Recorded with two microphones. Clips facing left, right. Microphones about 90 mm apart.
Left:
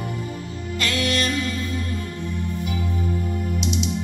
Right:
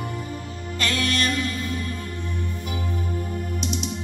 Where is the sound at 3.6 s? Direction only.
45° right (ahead or behind).